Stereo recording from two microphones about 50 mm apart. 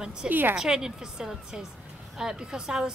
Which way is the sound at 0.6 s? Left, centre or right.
Centre.